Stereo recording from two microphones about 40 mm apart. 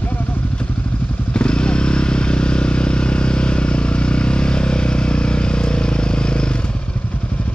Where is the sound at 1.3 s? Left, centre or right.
Left.